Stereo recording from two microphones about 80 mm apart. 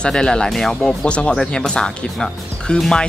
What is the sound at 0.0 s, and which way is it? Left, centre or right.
Speech, centre.